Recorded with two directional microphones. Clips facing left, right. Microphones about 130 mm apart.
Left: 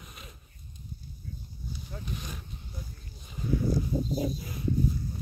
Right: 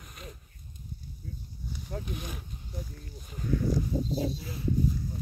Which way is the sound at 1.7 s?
65° right (ahead or behind).